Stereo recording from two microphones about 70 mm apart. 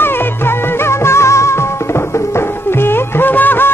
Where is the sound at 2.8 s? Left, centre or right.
Left.